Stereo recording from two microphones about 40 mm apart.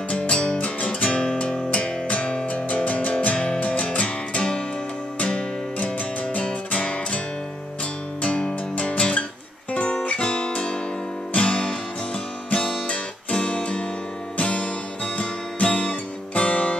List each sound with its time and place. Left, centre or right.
0.1 s music: left
1.7 s music: left
8.2 s music: left
10.0 s guitar: left
11.3 s music: left
12.5 s guitar: left
14.3 s music: left